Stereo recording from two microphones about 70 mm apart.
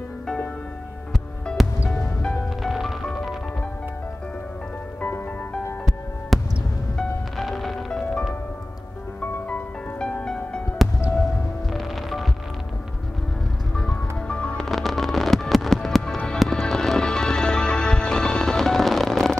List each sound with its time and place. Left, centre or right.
1.9 s music: centre
6.3 s music: centre
10.8 s music: centre
13.7 s music: centre
14.7 s music: centre